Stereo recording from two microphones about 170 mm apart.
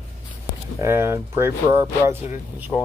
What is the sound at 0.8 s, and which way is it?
Speech, 15° right (ahead or behind).